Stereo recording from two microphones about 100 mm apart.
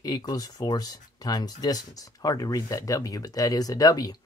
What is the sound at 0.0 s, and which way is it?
Speech, 40° left (ahead or behind).